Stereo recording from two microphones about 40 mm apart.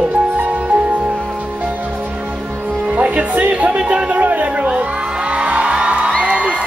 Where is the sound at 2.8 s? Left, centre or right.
Right.